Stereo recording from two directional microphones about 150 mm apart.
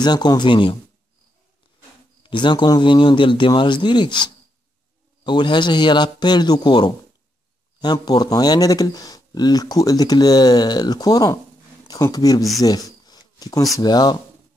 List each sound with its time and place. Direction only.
0.0 s speech: 30° left (ahead or behind)
2.2 s a man's voice: 30° left (ahead or behind)
12.6 s a sound: 25° left (ahead or behind)
13.7 s speech: 25° left (ahead or behind)